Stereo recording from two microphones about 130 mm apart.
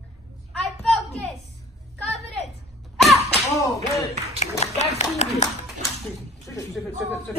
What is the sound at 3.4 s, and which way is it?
Speech, 25° left (ahead or behind).